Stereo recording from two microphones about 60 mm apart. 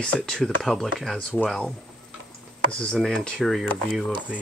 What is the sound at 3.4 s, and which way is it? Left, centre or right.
Speech, centre.